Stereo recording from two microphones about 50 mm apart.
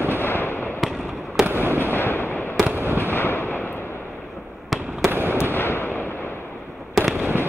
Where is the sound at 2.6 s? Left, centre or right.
Right.